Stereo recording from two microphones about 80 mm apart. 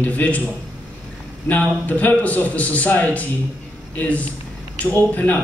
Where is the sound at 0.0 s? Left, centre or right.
Centre.